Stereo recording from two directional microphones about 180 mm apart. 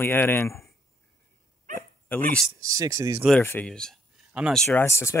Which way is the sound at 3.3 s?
10° left (ahead or behind).